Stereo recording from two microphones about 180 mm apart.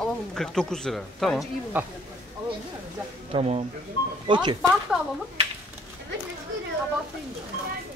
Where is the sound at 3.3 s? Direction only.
35° right (ahead or behind).